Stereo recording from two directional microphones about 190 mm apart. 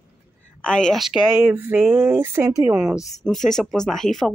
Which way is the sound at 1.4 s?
10° right (ahead or behind).